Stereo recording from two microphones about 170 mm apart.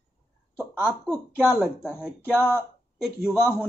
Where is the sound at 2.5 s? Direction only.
Centre (ahead or behind).